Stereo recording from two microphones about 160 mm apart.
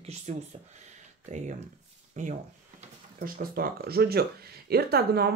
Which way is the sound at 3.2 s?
70° right (ahead or behind).